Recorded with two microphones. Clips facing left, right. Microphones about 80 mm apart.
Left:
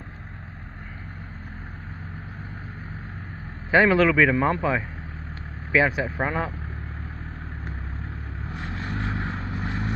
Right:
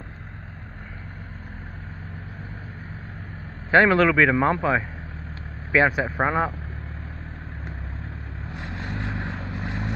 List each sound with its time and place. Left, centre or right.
3.7 s speech: centre
8.9 s vehicle: left